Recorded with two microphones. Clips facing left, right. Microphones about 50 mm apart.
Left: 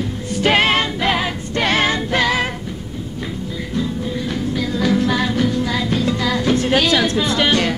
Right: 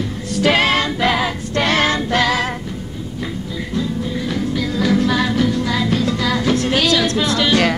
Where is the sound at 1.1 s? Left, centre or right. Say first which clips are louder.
Even; centre.